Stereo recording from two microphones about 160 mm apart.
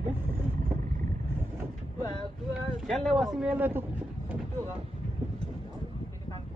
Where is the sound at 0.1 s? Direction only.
15° right (ahead or behind).